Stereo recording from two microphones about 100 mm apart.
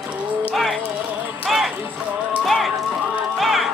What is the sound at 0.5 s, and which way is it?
Clip-clop, centre (ahead or behind).